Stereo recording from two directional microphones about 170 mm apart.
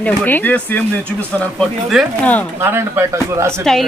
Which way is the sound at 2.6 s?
15° right (ahead or behind).